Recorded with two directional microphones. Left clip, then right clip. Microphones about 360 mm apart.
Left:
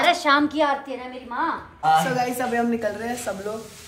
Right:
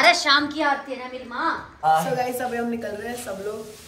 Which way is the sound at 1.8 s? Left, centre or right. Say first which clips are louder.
Left 1 dB; centre.